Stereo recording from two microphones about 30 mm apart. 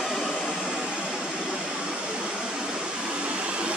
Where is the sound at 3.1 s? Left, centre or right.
Right.